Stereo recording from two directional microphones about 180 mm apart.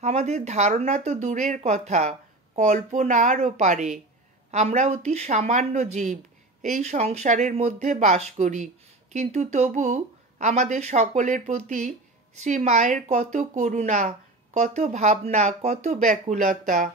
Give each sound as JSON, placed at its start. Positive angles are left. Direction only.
{"t": 0.0, "sound": "speech", "side_deg": -40}